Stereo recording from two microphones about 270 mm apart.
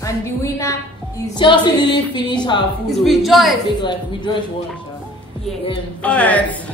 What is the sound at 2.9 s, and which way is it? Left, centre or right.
Speech, centre.